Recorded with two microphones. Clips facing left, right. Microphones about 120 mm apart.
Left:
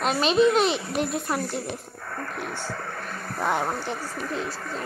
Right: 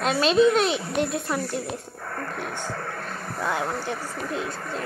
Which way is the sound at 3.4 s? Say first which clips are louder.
Left 2 dB; 20° left (ahead or behind).